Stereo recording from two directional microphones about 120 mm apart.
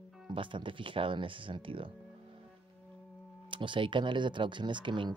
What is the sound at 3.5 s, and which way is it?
Speech, 45° right (ahead or behind).